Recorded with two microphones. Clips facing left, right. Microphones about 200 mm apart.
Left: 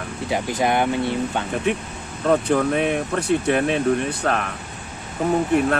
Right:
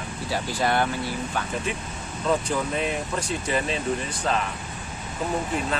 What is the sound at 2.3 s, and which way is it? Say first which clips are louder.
Speech: left 7 dB; 60° left (ahead or behind).